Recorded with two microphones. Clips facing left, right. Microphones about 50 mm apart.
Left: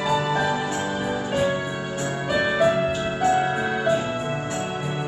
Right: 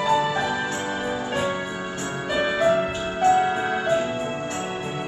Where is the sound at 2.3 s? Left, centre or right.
Centre.